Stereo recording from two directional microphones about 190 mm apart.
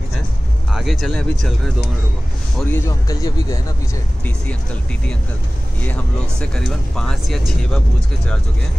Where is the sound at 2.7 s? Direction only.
20° left (ahead or behind).